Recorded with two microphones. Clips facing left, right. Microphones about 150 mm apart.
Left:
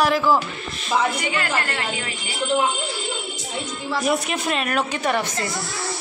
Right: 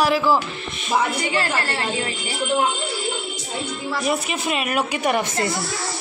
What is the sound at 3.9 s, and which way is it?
A woman's voice, centre (ahead or behind).